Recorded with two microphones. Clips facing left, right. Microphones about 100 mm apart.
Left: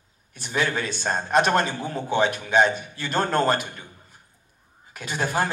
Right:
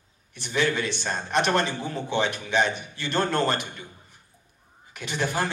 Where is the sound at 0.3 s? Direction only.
40° left (ahead or behind).